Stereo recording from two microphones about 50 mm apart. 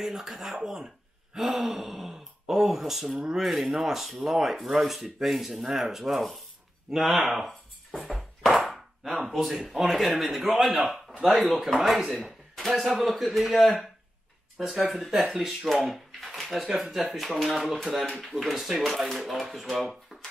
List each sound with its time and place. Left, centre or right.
0.0 s speech: centre
15.8 s a sound: centre
16.6 s speech: centre